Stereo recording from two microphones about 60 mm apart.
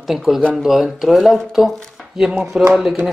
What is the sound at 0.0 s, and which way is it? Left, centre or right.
Speech, centre.